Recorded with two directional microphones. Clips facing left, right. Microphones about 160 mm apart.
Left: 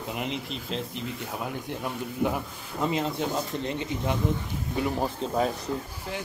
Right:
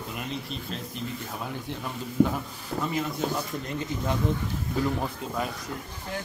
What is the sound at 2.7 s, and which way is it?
Speech, 65° right (ahead or behind).